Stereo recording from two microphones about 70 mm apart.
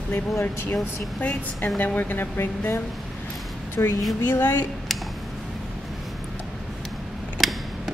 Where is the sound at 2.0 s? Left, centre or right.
Left.